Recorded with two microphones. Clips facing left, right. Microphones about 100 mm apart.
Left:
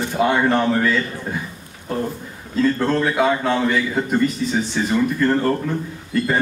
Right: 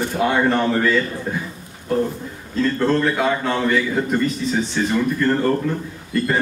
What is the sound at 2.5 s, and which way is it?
A man's voice, 5° left (ahead or behind).